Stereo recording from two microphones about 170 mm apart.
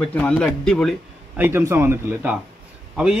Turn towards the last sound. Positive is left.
turn(degrees=-5)  # may be behind; listen again after turning